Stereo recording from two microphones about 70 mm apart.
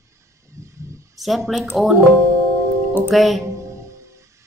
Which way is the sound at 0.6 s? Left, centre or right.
Right.